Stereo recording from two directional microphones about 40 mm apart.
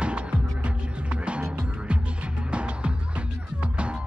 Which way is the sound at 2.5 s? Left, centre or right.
Right.